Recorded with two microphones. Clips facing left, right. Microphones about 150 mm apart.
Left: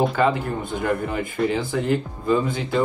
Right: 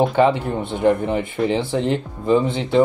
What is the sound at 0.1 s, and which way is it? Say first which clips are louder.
Speech: right 4 dB; 30° right (ahead or behind).